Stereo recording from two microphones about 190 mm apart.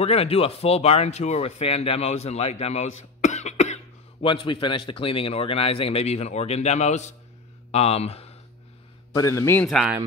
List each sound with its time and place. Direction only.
0.0 s speech: 30° left (ahead or behind)
9.1 s a man's voice: 15° left (ahead or behind)